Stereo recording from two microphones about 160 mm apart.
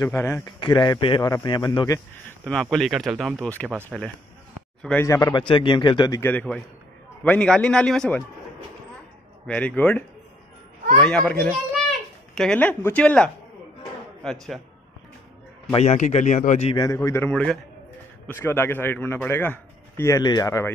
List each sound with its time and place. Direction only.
0.0 s a man's voice: 15° left (ahead or behind)
0.5 s speech: 30° left (ahead or behind)
2.2 s speech: 5° left (ahead or behind)
4.8 s a man's voice: 15° left (ahead or behind)
5.5 s speech: 30° left (ahead or behind)
6.3 s a man's voice: 10° left (ahead or behind)
9.5 s a man's voice: 10° left (ahead or behind)
12.4 s a man's voice: 5° left (ahead or behind)
15.7 s speech: 45° left (ahead or behind)
16.7 s a man's voice: 20° left (ahead or behind)